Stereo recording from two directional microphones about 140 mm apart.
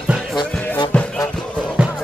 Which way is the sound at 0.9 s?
10° left (ahead or behind).